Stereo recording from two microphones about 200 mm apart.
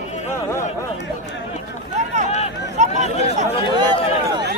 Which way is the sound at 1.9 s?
35° right (ahead or behind).